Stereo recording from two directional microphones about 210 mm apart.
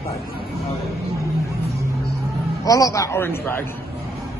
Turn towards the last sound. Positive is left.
turn(degrees=10)  # may be behind; listen again after turning